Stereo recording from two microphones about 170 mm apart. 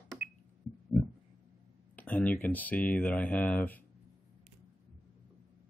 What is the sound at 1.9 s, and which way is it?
Speech, 10° left (ahead or behind).